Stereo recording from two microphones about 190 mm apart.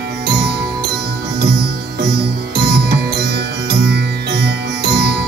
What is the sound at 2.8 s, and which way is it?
Music, 55° right (ahead or behind).